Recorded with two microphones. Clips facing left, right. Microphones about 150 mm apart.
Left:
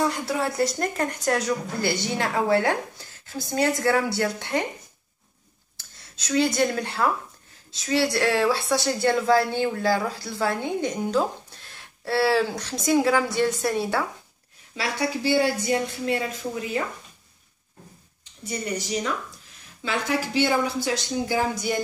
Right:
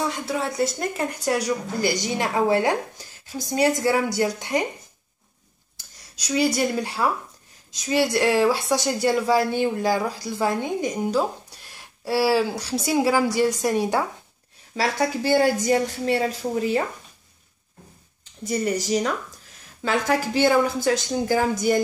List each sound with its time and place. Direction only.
0.0 s a woman's voice: centre (ahead or behind)
5.8 s a woman's voice: 10° right (ahead or behind)
14.8 s speech: 45° right (ahead or behind)
18.5 s speech: 40° right (ahead or behind)